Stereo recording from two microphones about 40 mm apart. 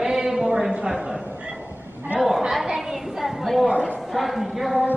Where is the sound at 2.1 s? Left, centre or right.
Centre.